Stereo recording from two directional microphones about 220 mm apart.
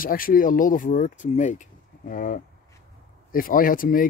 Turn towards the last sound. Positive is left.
turn(degrees=40)  # may be behind; listen again after turning